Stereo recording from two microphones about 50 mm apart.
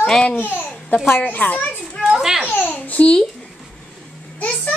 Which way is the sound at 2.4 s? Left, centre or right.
Left.